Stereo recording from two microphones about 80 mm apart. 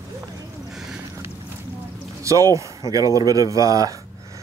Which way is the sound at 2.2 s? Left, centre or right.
Right.